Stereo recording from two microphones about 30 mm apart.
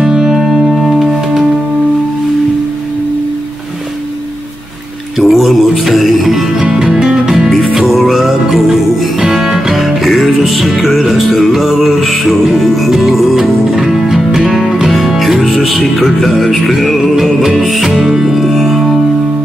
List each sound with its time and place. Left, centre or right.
0.0 s music: centre
1.0 s music: centre
5.2 s music: centre
6.7 s music: centre
7.7 s music: centre
13.7 s music: centre
18.3 s music: centre